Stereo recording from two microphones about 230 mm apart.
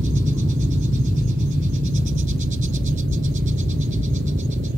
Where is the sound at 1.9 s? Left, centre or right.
Right.